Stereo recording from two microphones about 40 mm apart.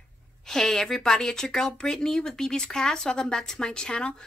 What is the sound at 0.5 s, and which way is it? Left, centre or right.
Speech, centre.